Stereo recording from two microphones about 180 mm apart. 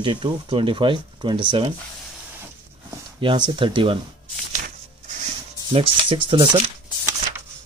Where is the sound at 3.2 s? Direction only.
25° right (ahead or behind).